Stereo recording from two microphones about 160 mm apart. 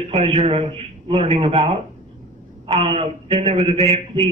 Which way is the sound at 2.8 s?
40° right (ahead or behind).